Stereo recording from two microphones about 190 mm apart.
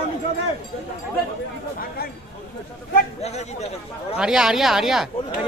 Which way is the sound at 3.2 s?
35° left (ahead or behind).